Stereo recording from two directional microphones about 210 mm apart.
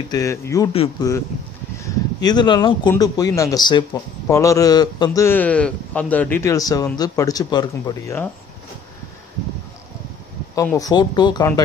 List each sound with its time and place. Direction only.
0.1 s speech: 15° left (ahead or behind)
10.5 s speech: 15° left (ahead or behind)